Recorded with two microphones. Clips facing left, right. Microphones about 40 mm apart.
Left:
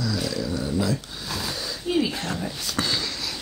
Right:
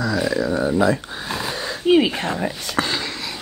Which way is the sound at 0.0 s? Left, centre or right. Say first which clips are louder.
Right 7 dB; right.